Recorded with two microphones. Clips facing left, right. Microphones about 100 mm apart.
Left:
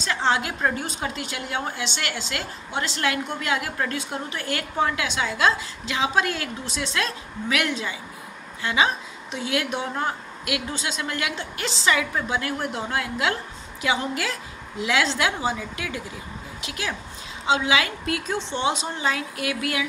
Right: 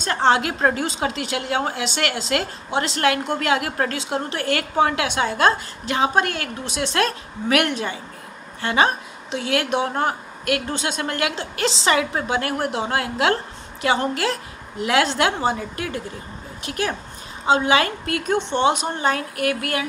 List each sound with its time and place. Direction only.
0.0 s a woman's voice: 60° right (ahead or behind)